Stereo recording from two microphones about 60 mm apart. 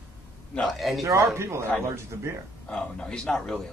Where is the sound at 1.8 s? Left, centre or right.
Right.